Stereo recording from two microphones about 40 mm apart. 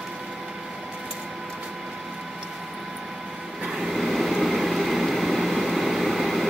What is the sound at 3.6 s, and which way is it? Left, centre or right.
Train, centre.